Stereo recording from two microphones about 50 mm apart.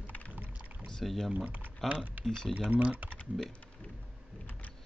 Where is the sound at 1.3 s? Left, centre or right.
Right.